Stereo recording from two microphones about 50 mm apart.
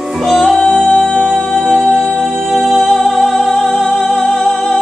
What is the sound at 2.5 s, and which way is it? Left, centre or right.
Music, centre.